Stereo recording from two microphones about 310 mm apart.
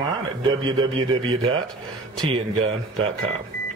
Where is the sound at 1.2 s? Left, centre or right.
Centre.